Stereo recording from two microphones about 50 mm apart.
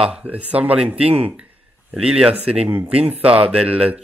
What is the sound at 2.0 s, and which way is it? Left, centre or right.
Speech, centre.